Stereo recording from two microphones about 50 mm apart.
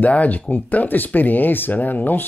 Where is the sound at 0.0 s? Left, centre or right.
Left.